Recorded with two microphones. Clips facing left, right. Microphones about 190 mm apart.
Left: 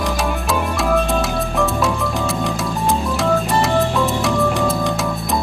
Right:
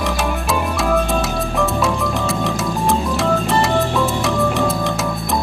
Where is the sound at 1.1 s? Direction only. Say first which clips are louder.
Even; centre (ahead or behind).